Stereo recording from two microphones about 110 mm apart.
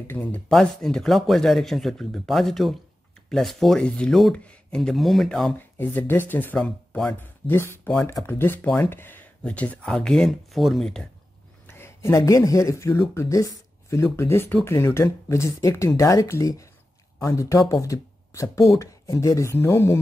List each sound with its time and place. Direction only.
0.0 s speech: 15° left (ahead or behind)
0.5 s speech: 5° left (ahead or behind)
5.6 s speech: 20° left (ahead or behind)
11.6 s speech: 25° left (ahead or behind)